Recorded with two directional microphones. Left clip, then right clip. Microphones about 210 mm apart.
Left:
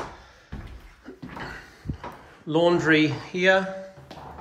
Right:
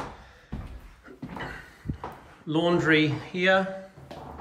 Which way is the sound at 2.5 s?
5° left (ahead or behind).